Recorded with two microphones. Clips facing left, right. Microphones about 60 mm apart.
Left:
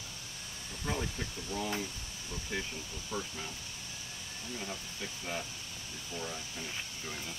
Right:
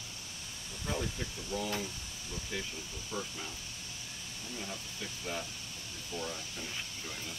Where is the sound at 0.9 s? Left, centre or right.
Left.